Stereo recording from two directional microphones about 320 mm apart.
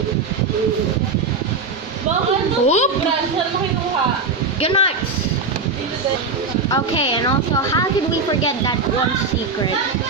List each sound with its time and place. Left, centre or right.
2.6 s a woman's voice: left
4.6 s speech: centre
6.7 s a woman's voice: centre